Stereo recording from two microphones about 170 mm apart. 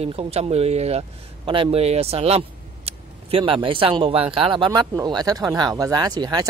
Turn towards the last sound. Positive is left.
turn(degrees=-20)  # may be behind; listen again after turning